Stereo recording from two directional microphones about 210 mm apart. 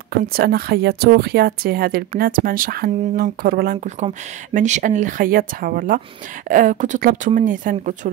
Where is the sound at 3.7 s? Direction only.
35° right (ahead or behind).